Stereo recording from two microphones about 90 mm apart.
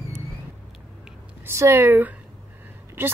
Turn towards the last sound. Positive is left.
turn(degrees=-25)  # may be behind; listen again after turning